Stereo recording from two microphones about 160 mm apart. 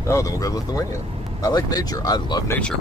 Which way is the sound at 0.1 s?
20° left (ahead or behind).